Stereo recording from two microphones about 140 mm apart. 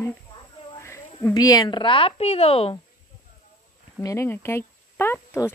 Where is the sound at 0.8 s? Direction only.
20° left (ahead or behind); by 2.8 s 40° left (ahead or behind).